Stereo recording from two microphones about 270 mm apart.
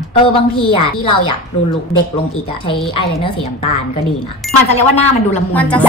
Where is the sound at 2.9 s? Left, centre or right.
Centre.